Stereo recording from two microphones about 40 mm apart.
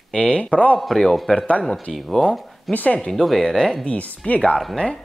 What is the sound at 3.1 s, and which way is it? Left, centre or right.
Speech, centre.